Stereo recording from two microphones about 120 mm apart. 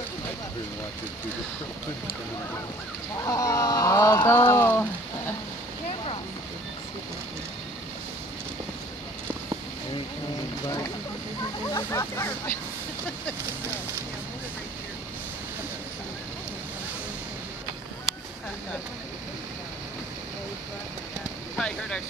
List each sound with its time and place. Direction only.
3.2 s speech: 30° left (ahead or behind)
11.7 s speech: 25° left (ahead or behind)
21.5 s speech: 10° left (ahead or behind)